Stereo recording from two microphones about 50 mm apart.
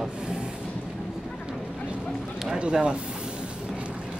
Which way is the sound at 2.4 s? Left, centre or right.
Centre.